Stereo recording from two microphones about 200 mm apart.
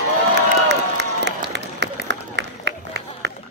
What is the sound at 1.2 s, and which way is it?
Applause, 60° right (ahead or behind).